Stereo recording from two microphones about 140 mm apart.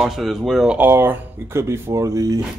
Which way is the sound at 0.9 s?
15° right (ahead or behind).